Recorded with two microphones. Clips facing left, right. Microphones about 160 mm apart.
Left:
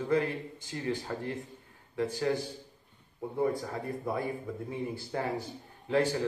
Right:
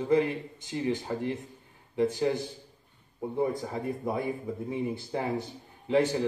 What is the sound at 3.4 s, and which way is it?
A man's voice, 20° right (ahead or behind).